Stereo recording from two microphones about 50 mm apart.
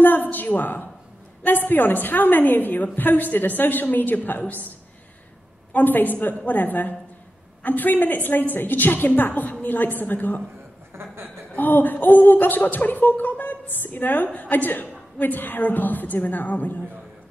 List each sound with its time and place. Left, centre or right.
0.0 s a woman's voice: left
5.7 s a woman's voice: left
10.9 s chuckle: right
11.5 s a woman's voice: left